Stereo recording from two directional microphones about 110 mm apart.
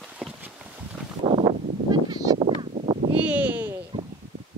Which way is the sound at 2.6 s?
50° right (ahead or behind).